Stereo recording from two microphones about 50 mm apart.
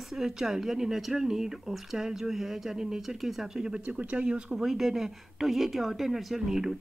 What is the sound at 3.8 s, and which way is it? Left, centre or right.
Speech, right.